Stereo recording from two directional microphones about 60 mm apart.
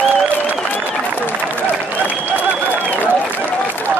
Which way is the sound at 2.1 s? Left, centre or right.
Right.